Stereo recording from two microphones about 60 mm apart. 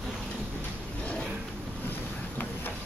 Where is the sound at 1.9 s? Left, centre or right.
Left.